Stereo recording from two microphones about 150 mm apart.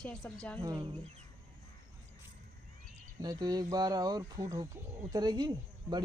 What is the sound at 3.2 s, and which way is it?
Speech, 25° right (ahead or behind).